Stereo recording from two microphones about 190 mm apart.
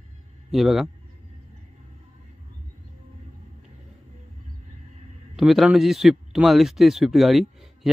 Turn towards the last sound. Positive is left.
turn(degrees=0)  # may be behind; listen again after turning